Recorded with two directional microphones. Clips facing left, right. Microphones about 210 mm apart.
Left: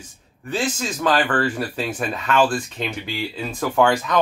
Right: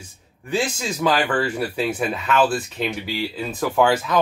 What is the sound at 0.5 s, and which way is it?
A man's voice, 10° right (ahead or behind).